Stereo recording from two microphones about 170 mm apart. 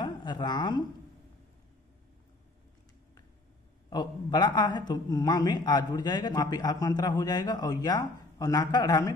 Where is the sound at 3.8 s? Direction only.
25° left (ahead or behind).